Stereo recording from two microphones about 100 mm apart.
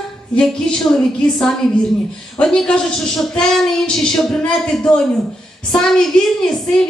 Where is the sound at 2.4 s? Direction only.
10° left (ahead or behind).